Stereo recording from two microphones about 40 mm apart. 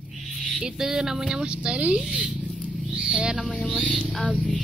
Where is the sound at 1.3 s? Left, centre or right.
Right.